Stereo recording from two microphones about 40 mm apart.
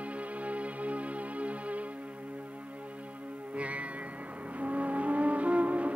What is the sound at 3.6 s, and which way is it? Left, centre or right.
Music, right.